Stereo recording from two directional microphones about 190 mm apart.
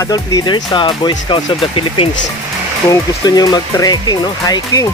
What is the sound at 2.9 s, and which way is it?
Speech, 20° left (ahead or behind).